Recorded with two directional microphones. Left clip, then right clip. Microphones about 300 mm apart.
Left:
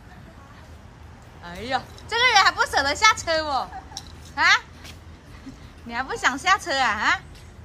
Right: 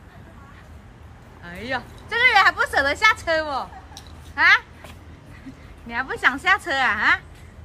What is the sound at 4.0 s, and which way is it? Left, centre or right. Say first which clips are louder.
Babbling: left 4 dB; right.